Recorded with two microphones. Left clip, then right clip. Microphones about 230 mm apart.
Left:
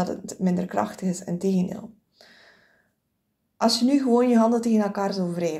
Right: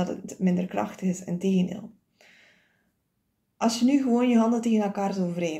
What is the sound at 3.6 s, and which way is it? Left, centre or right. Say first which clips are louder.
Speech: left 3 dB; centre.